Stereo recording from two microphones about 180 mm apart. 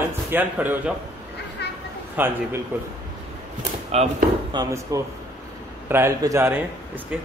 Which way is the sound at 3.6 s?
35° right (ahead or behind).